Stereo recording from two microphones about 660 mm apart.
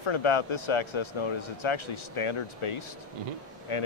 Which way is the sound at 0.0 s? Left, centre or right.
Left.